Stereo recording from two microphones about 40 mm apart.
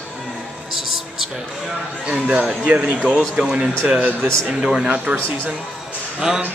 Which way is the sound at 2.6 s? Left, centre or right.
Right.